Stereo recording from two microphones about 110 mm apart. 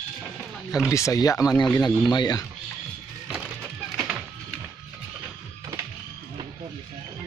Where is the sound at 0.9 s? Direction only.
30° left (ahead or behind).